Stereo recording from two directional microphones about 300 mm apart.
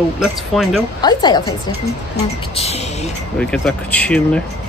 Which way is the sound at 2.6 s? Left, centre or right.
Left.